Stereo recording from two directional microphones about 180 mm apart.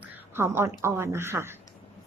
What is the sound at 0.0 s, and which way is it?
A woman's voice, 10° right (ahead or behind).